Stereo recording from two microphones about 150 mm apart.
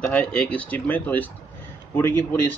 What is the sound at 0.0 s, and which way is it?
Speech, 10° left (ahead or behind).